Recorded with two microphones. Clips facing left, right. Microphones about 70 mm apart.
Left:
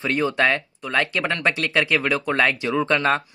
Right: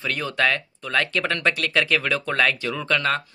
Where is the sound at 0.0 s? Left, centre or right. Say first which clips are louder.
Left 3 dB; left.